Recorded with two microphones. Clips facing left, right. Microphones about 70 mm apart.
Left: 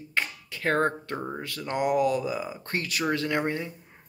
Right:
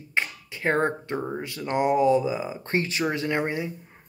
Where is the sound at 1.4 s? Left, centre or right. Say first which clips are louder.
Right 3 dB; centre.